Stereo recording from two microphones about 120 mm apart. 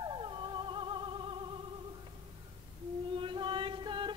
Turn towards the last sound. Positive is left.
turn(degrees=-45)  # may be behind; listen again after turning